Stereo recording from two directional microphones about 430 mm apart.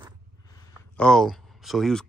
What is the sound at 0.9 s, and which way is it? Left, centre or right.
Speech, centre.